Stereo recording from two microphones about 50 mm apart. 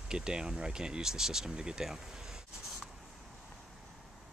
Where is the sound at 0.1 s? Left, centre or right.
Centre.